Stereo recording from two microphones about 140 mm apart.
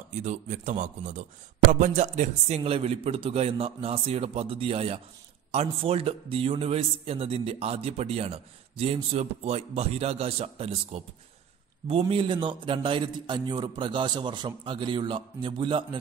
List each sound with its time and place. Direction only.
0.1 s a man's voice: 55° right (ahead or behind)
12.1 s a man's voice: 35° right (ahead or behind)